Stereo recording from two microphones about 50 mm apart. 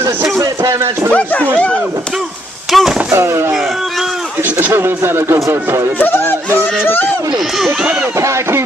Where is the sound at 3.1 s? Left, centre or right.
Right.